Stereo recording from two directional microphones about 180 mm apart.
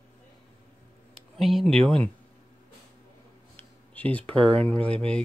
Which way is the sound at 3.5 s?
10° left (ahead or behind).